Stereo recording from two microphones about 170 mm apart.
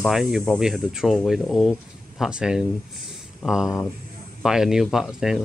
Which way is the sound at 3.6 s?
20° left (ahead or behind).